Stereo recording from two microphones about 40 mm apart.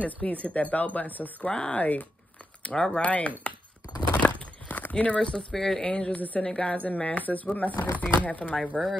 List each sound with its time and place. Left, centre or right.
0.0 s speech: left
1.5 s a woman's voice: left
1.8 s speech: left
2.7 s speech: centre
3.0 s speech: left
4.2 s a sound: left
4.9 s speech: left
5.2 s speech: centre
5.9 s a woman's voice: left
6.1 s speech: left
6.4 s a woman's voice: left
6.8 s speech: left